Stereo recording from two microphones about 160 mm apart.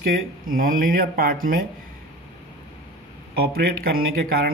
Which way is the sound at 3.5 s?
65° right (ahead or behind).